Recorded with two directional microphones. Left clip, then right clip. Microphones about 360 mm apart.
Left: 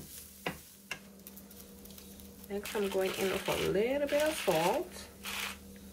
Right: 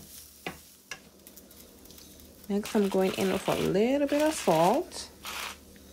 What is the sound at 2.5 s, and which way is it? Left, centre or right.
Speech, centre.